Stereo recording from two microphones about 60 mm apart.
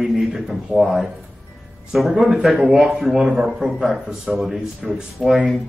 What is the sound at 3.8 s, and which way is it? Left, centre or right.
Speech, centre.